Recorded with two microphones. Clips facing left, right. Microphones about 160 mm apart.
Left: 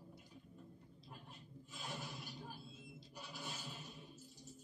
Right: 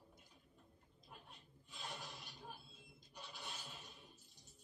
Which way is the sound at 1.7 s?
Centre (ahead or behind).